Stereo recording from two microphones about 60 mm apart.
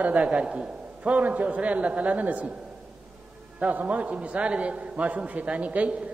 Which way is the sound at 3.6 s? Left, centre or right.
Right.